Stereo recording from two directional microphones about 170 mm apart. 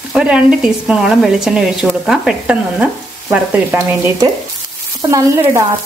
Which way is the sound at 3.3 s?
10° right (ahead or behind).